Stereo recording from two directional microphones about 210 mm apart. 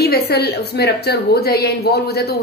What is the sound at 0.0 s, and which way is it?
A woman's voice, 50° left (ahead or behind).